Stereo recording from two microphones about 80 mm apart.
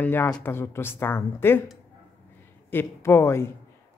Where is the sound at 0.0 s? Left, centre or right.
Left.